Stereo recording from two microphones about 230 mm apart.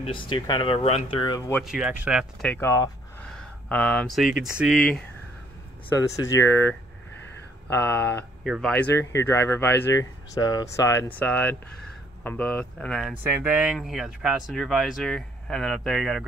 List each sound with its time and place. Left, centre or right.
0.0 s speech: left
1.6 s speech: centre
2.5 s speech: centre
5.9 s speech: centre